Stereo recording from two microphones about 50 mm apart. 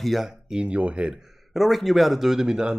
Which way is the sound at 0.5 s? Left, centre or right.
Right.